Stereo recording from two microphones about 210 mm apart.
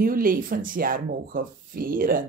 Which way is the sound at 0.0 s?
45° right (ahead or behind).